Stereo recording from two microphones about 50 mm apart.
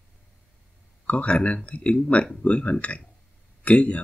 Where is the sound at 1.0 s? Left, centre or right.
Left.